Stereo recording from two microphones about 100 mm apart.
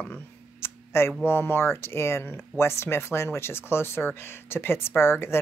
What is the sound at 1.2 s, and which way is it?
Speech, 25° left (ahead or behind).